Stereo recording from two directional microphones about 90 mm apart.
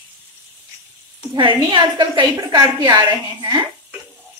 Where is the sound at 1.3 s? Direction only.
60° right (ahead or behind).